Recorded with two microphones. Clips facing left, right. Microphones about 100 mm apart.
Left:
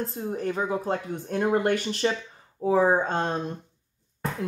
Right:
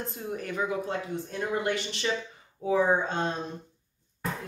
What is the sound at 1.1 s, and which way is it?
Speech, 55° left (ahead or behind).